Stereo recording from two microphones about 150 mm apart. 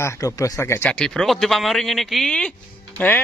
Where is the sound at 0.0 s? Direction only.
20° left (ahead or behind).